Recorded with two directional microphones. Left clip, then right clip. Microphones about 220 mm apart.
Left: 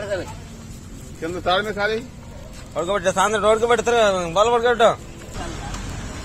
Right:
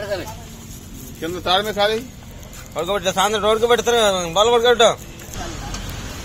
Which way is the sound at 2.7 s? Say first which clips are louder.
Even; 25° left (ahead or behind).